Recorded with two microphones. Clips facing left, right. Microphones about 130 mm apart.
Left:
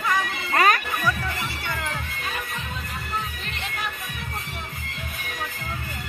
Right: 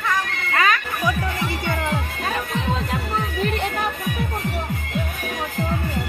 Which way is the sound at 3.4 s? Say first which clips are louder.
Right 10 dB; 55° right (ahead or behind).